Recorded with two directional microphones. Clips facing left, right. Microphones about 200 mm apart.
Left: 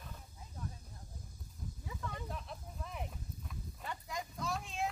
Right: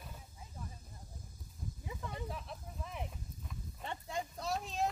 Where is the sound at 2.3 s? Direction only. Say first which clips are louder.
Right 1 dB; centre (ahead or behind).